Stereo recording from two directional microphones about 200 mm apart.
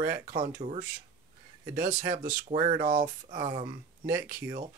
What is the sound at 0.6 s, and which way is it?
Speech, 35° right (ahead or behind).